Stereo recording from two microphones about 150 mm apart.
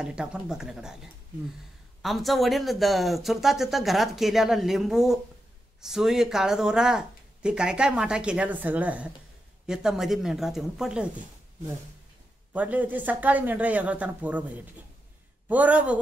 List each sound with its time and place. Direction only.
0.0 s speech: 5° right (ahead or behind)
12.5 s speech: 10° right (ahead or behind)